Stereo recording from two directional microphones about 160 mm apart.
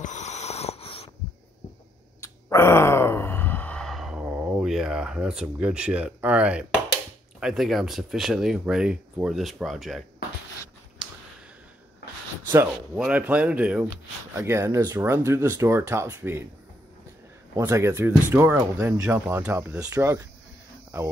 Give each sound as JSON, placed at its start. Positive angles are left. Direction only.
{"t": 0.0, "sound": "wheeze", "side_deg": 45}
{"t": 2.1, "sound": "a sound", "side_deg": 15}
{"t": 7.3, "sound": "speech", "side_deg": 0}
{"t": 12.9, "sound": "speech", "side_deg": -5}
{"t": 17.6, "sound": "speech", "side_deg": -15}